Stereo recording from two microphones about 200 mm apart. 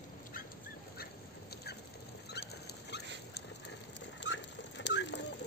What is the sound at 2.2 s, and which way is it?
Rodents, 55° left (ahead or behind).